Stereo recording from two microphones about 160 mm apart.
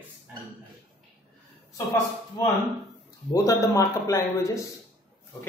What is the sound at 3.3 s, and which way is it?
Speech, 20° left (ahead or behind).